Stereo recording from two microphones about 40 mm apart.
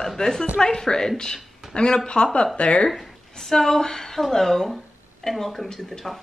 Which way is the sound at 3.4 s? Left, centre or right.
Centre.